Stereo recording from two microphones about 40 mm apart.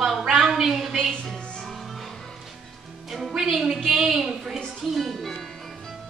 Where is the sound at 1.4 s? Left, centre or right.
Left.